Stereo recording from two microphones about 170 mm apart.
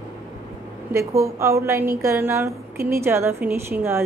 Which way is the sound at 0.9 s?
15° right (ahead or behind).